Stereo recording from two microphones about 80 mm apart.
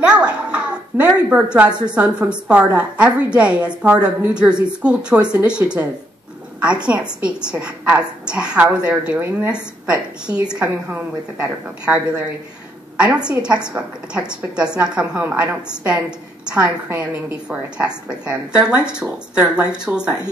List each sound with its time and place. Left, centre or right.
0.0 s a child's voice: centre
13.0 s a child's voice: centre
15.2 s a woman's voice: right
16.4 s a woman's voice: centre
16.9 s a woman's voice: right
17.5 s a child's voice: centre